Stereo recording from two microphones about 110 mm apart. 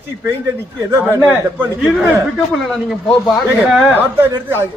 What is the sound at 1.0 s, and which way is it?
Speech, 20° right (ahead or behind).